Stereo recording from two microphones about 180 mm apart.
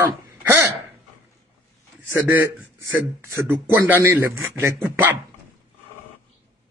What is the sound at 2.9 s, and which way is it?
Speech, 10° right (ahead or behind).